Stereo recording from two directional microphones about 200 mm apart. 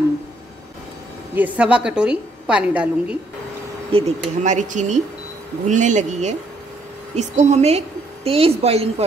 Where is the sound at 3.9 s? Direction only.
30° right (ahead or behind).